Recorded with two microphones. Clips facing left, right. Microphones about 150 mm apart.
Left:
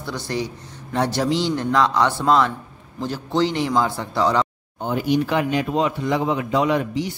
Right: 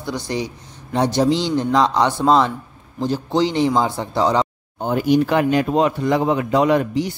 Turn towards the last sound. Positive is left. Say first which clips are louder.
# right 4 dB
turn(degrees=-45)  # may be behind; listen again after turning